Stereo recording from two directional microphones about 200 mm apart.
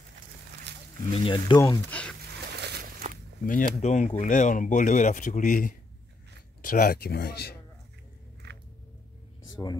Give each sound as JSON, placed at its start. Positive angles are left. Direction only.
{"t": 1.1, "sound": "speech", "side_deg": 25}
{"t": 2.4, "sound": "a sound", "side_deg": -55}
{"t": 3.4, "sound": "speech", "side_deg": 40}
{"t": 8.4, "sound": "biting", "side_deg": -55}